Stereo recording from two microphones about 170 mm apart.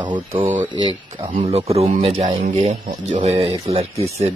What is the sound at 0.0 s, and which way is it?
Speech, 30° right (ahead or behind).